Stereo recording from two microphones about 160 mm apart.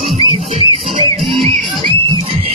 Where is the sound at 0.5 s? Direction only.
35° right (ahead or behind).